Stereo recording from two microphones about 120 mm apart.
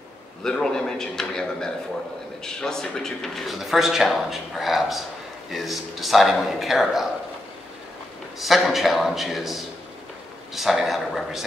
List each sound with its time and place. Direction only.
0.4 s speech: 5° left (ahead or behind)
8.4 s speech: centre (ahead or behind)